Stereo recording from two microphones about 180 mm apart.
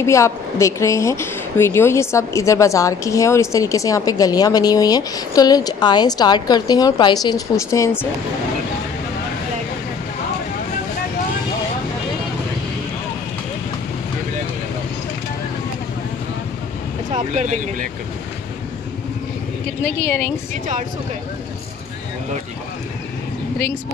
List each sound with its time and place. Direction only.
0.0 s a woman's voice: 15° left (ahead or behind)
17.1 s speech: 40° right (ahead or behind)
19.8 s a woman's voice: 10° left (ahead or behind)